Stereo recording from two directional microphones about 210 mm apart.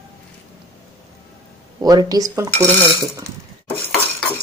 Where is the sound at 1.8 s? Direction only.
20° right (ahead or behind).